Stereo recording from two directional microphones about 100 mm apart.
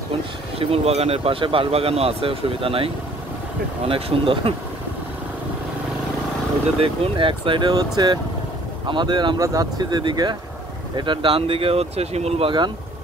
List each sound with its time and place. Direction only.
0.6 s speech: 85° right; by 4.6 s 60° right (ahead or behind)
6.8 s speech: 60° right (ahead or behind)
9.4 s speech: 35° right (ahead or behind)
11.0 s speech: 60° right (ahead or behind); by 12.5 s 85° right